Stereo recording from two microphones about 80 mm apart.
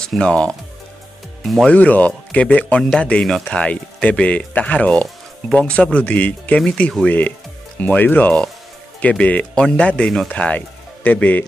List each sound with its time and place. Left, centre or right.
0.0 s speech: centre
1.4 s speech: centre
1.7 s speech: centre